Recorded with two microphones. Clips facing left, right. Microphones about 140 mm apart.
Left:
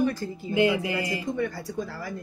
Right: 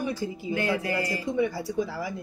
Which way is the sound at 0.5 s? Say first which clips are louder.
Left 5 dB; 15° left (ahead or behind).